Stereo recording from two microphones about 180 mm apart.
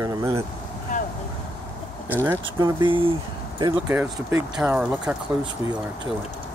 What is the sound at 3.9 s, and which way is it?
Speech, 10° right (ahead or behind).